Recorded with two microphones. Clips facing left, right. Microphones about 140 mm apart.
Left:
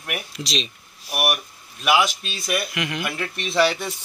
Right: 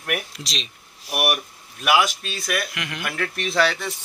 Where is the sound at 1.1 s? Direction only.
15° right (ahead or behind).